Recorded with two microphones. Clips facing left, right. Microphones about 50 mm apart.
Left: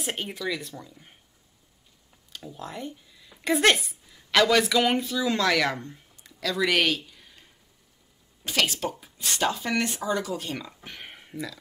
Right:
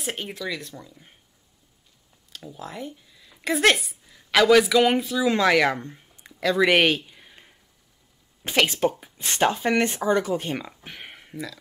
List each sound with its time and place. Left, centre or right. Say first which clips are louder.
0.0 s speech: even; centre
2.3 s speech: right 1 dB; centre; by 7.4 s right
8.5 s speech: right 5 dB; right
10.8 s a sound: right 1 dB; centre